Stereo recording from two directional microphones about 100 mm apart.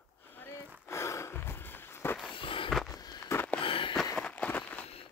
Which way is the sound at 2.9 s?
40° left (ahead or behind).